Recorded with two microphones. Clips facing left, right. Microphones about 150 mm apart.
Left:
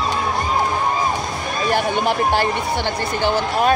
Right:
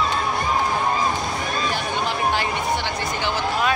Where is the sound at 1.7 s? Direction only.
55° left (ahead or behind).